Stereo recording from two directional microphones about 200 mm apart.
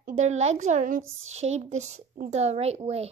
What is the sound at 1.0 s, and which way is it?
Speech, 80° right.